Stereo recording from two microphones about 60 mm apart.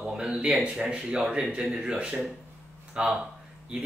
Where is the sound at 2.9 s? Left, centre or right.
Centre.